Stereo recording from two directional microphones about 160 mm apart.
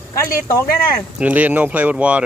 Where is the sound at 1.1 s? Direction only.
10° right (ahead or behind).